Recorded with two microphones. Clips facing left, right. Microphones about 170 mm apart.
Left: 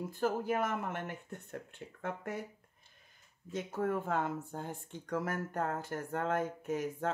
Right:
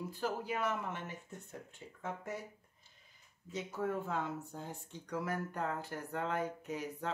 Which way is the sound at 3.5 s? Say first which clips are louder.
Left 3 dB; 50° left (ahead or behind).